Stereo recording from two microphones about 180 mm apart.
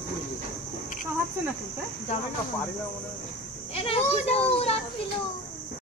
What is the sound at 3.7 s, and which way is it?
A child's voice, 35° left (ahead or behind).